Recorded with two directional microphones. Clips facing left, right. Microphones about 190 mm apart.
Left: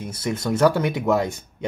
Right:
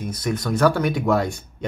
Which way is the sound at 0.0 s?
25° left (ahead or behind).